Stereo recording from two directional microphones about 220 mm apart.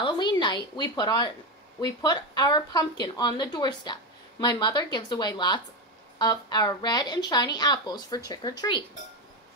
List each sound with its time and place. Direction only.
0.0 s speech: 20° left (ahead or behind)